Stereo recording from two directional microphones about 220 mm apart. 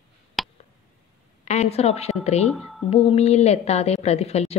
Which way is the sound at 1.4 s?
30° left (ahead or behind).